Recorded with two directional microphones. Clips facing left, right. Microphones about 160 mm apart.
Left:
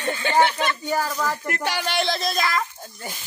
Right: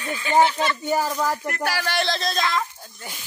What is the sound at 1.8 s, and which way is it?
Speech, 15° left (ahead or behind).